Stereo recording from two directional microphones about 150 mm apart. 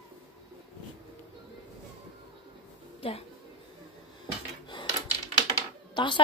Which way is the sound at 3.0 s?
40° left (ahead or behind).